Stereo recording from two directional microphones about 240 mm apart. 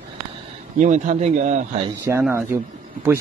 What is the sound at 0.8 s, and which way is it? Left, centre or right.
Speech, right.